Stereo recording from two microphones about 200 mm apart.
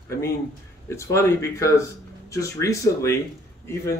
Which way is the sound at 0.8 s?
15° left (ahead or behind).